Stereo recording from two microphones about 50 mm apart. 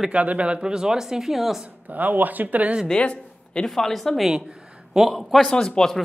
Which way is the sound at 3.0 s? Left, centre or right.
Left.